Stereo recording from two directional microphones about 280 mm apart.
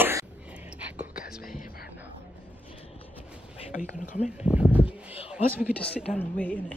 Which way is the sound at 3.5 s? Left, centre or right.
Left.